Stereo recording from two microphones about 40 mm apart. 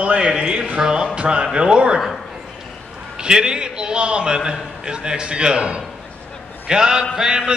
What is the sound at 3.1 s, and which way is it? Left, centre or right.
A man's voice, right.